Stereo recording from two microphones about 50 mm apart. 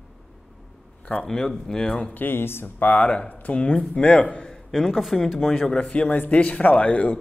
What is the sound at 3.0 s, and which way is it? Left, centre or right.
Speech, left.